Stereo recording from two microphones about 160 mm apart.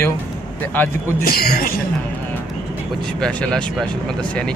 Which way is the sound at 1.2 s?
75° left (ahead or behind).